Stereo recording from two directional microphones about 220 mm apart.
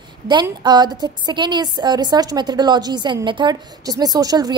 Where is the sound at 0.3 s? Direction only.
20° right (ahead or behind).